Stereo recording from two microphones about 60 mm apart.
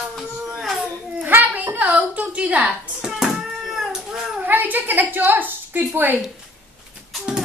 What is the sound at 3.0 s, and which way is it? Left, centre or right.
Cat, centre.